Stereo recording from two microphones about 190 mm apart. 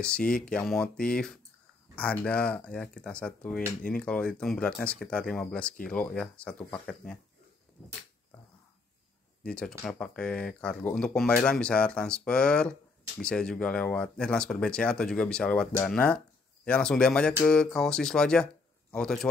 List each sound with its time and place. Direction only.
0.0 s speech: 5° left (ahead or behind)
9.4 s speech: 5° left (ahead or behind)